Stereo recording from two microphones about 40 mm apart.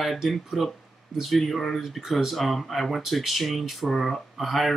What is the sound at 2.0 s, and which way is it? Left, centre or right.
Speech, centre.